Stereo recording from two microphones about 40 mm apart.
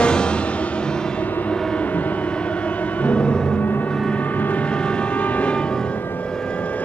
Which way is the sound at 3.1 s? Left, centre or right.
Left.